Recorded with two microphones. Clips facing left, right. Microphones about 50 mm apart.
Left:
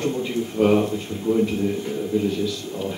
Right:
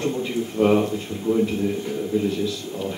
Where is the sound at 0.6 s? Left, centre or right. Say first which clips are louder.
Even; centre.